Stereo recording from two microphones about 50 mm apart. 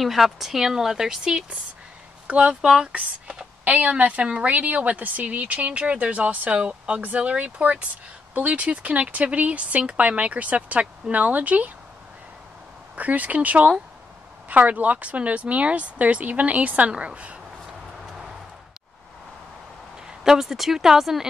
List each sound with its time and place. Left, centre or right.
0.0 s speech: centre
2.2 s speech: right
2.6 s speech: centre
3.6 s a woman's voice: right
12.9 s a woman's voice: right
20.1 s speech: centre